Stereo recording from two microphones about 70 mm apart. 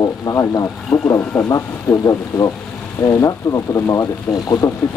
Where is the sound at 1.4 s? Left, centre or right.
Left.